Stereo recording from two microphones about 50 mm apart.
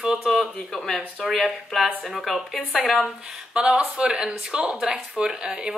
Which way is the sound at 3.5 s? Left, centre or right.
Right.